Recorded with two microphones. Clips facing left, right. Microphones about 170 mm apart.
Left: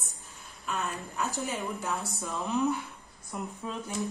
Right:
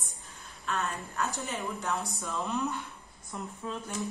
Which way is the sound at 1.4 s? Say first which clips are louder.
Left 1 dB; centre (ahead or behind).